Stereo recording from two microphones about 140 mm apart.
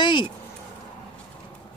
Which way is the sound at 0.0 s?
35° left (ahead or behind).